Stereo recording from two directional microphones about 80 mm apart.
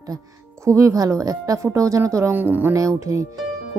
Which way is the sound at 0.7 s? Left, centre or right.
Right.